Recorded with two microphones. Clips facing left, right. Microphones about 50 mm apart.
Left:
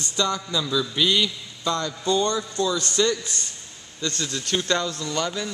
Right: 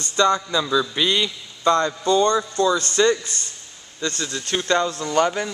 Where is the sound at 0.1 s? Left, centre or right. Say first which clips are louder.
Right 7 dB; right.